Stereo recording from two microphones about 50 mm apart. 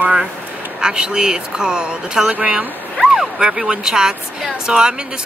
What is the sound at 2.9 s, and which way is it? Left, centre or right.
Speech, centre.